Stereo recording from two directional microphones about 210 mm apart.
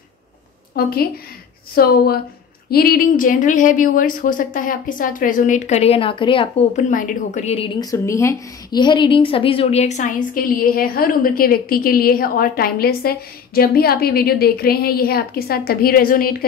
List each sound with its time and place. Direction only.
0.7 s a woman's voice: 45° left (ahead or behind)